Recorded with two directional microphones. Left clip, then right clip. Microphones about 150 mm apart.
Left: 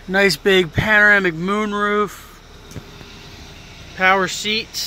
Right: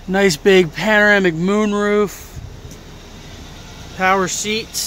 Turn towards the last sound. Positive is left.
turn(degrees=-5)  # may be behind; listen again after turning